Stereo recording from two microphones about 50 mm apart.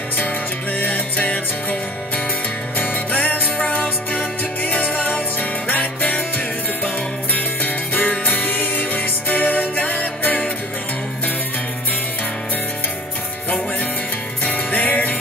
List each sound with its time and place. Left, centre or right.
0.7 s music: left
14.4 s music: left